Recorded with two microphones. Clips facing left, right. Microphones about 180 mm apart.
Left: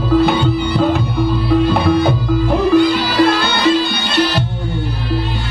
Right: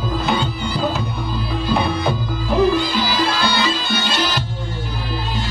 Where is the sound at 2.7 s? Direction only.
60° left (ahead or behind).